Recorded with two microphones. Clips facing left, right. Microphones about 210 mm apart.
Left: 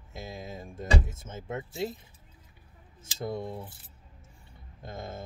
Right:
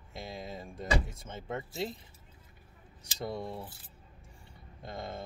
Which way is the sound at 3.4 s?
20° left (ahead or behind).